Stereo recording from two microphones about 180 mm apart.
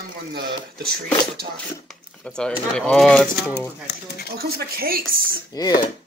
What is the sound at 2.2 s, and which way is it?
Speech, 5° left (ahead or behind).